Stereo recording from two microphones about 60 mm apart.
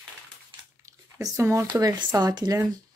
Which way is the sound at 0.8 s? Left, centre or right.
Right.